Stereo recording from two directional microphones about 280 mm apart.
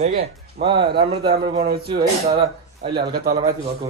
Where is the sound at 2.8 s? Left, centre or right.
Right.